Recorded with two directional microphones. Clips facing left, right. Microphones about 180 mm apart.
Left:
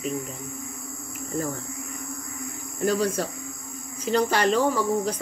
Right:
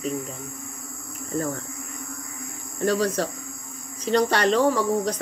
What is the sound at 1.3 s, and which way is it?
Speech, centre (ahead or behind).